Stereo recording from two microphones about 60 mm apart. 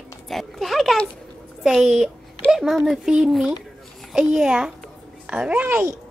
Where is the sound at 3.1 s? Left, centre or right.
Centre.